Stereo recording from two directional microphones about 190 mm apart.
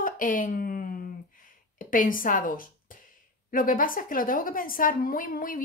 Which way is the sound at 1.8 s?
45° left (ahead or behind).